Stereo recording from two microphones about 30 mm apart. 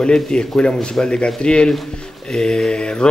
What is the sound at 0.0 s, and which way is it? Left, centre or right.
Speech, left.